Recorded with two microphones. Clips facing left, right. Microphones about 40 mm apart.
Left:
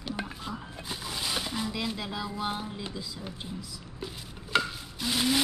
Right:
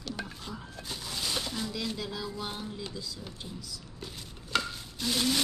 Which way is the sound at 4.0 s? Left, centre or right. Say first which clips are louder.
Left 6 dB; centre.